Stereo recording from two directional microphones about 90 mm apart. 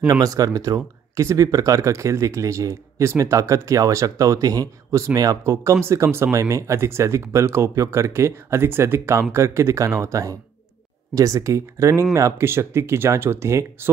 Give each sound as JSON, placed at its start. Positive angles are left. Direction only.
{"t": 0.1, "sound": "speech", "side_deg": -40}